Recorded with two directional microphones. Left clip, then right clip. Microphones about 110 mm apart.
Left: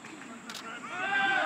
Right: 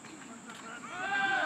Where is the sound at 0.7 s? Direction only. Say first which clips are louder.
Left 3 dB; 5° left (ahead or behind).